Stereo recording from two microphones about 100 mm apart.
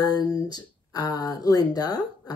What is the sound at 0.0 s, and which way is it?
Speech, 40° left (ahead or behind).